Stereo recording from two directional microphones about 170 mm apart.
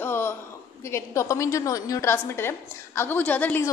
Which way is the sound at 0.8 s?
15° left (ahead or behind).